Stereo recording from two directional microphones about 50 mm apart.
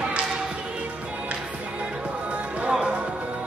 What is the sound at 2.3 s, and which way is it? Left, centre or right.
Music, right.